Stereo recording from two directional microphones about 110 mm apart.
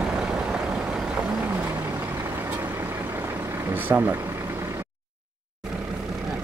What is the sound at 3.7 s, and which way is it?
Vehicle, 15° right (ahead or behind).